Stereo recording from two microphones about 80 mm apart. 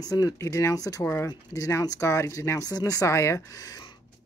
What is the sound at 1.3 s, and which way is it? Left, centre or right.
Speech, left.